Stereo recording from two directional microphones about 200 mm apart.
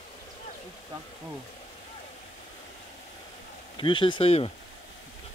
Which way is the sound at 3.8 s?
25° left (ahead or behind).